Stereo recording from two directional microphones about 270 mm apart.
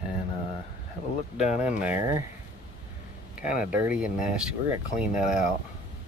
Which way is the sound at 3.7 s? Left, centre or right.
Centre.